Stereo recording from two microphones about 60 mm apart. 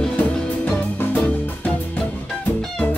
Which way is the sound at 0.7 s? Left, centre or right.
Left.